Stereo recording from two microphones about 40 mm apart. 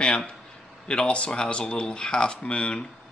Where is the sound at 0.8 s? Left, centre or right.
Left.